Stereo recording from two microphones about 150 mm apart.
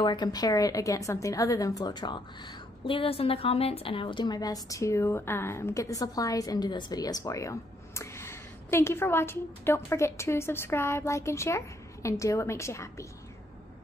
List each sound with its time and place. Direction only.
0.0 s a woman's voice: 30° left (ahead or behind)